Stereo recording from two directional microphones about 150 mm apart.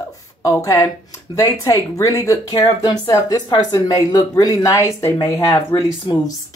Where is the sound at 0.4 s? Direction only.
20° left (ahead or behind).